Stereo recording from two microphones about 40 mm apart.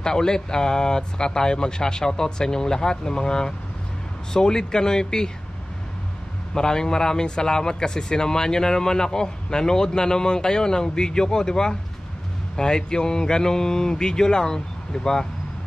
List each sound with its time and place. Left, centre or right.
0.0 s speech: centre
6.5 s speech: centre